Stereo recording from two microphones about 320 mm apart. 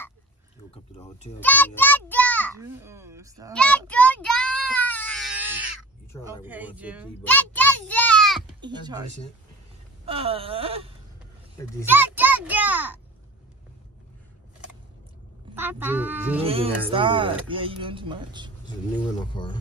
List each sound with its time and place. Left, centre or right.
0.7 s speech: centre
1.4 s a child's voice: centre
2.5 s speech: centre
3.5 s child singing: centre
6.4 s a child's voice: centre
8.5 s a child's voice: centre
10.0 s speech: centre
11.8 s a child's voice: centre
15.5 s a child's voice: centre
16.4 s speech: centre
19.1 s speech: centre